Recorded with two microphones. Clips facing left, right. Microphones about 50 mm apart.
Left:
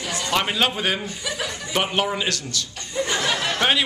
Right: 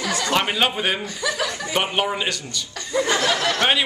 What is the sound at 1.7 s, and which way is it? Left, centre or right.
Speech, centre.